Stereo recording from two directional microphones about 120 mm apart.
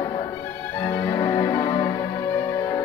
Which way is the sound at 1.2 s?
35° left (ahead or behind).